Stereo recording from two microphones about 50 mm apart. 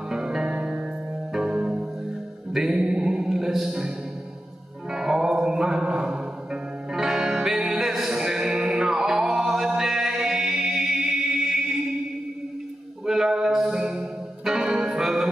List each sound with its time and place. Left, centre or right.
0.1 s music: centre
4.9 s music: centre
13.0 s music: centre